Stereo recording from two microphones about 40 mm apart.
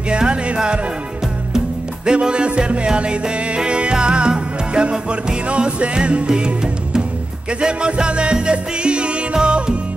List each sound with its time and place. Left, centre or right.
0.1 s music: right
2.0 s music: right